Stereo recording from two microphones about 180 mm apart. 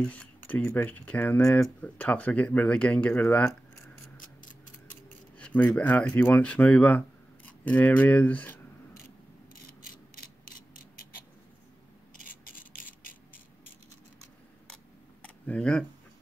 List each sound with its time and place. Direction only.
0.1 s speech: 10° left (ahead or behind)
5.4 s speech: 10° left (ahead or behind)
9.6 s a sound: 55° left (ahead or behind)
12.4 s rub: 50° left (ahead or behind)
15.2 s camera: 5° left (ahead or behind)